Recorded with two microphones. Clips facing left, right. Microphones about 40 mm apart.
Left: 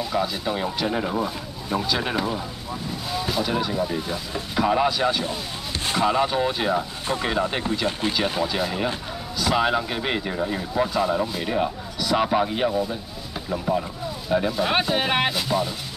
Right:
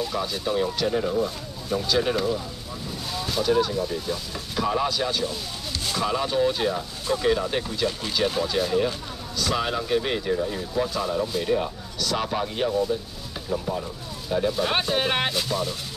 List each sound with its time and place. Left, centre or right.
0.0 s speech: centre
3.1 s speech: centre; by 7.7 s left
8.1 s speech: centre
14.5 s speech: centre